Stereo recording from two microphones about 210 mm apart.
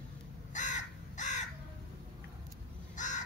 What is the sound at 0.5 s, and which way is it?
Crow, 35° left (ahead or behind).